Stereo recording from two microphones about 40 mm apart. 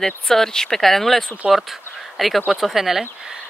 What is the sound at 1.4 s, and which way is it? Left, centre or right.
Speech, centre.